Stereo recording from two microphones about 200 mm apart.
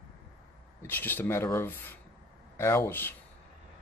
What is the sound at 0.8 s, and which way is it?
Speech, 10° left (ahead or behind).